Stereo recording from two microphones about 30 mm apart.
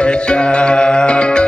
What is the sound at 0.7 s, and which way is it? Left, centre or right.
Music, left.